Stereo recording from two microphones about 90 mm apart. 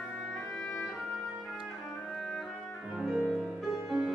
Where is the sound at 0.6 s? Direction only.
10° left (ahead or behind).